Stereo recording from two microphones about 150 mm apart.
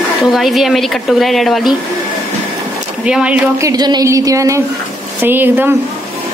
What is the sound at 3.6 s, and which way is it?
Speech, 25° right (ahead or behind).